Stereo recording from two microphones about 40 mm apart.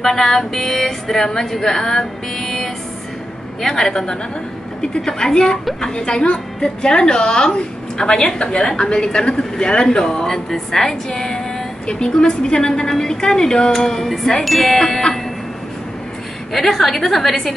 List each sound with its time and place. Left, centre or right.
0.0 s speech: centre
14.4 s music: centre
14.8 s speech: centre
16.5 s speech: centre